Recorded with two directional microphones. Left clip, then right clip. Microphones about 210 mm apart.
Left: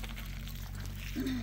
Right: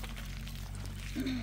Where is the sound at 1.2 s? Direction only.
25° right (ahead or behind).